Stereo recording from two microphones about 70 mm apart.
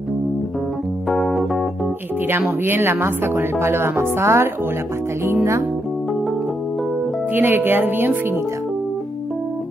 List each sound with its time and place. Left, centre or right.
1.0 s organ: centre
2.2 s speech: right
7.3 s speech: right